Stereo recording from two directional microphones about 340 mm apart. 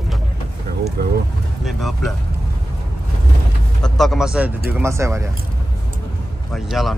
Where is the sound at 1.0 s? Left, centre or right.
Right.